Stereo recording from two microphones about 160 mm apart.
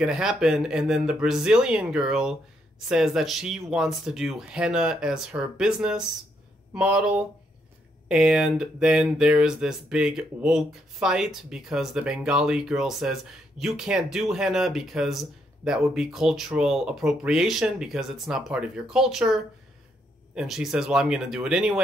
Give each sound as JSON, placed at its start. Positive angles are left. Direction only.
{"t": 0.0, "sound": "speech", "side_deg": -5}